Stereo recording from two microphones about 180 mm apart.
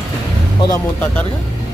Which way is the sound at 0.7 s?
10° left (ahead or behind).